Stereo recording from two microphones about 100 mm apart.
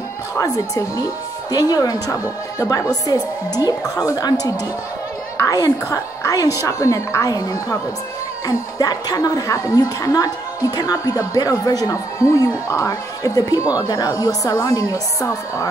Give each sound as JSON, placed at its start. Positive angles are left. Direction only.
{"t": 0.4, "sound": "speech", "side_deg": 35}